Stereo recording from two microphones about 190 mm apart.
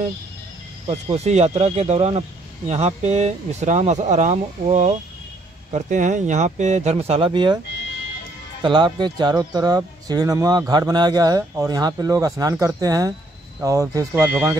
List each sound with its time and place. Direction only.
0.8 s speech: 30° right (ahead or behind)
8.6 s speech: 25° right (ahead or behind)